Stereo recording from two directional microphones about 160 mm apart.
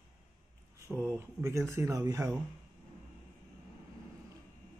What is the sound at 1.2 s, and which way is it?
Speech, 15° right (ahead or behind).